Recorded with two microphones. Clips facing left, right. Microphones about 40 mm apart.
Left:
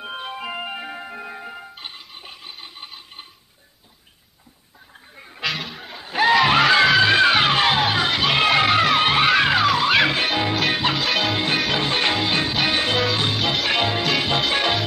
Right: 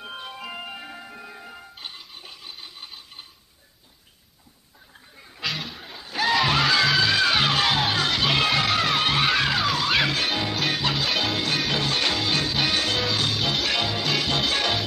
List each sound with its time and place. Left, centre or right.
0.0 s music: left
2.6 s a sound: left
5.1 s gargling: left
5.4 s snicker: centre
5.9 s music: left
11.0 s music: centre
11.3 s music: left
13.4 s music: centre
13.7 s music: left